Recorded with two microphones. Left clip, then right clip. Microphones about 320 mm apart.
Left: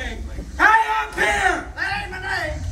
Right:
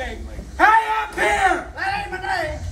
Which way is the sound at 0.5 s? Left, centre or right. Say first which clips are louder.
Even; right.